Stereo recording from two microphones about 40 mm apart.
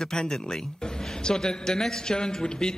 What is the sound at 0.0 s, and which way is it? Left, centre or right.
A man's voice, centre.